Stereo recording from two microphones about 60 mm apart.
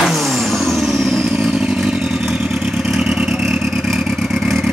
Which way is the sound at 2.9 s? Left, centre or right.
Centre.